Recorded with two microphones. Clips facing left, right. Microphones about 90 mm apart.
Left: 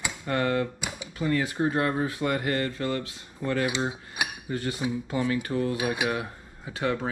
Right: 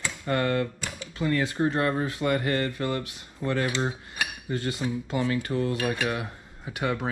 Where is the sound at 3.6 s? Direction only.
15° left (ahead or behind).